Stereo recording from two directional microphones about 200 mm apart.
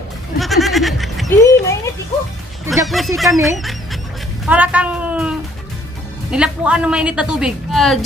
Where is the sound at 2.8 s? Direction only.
Centre (ahead or behind).